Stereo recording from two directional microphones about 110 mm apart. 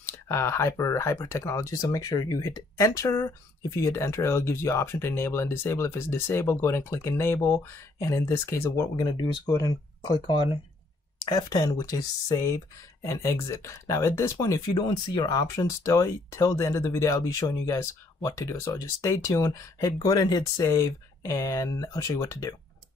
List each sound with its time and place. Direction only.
0.0 s speech: 20° left (ahead or behind)
14.7 s speech: 45° left (ahead or behind)